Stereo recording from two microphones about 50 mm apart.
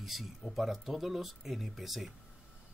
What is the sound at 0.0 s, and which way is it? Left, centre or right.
Speech, centre.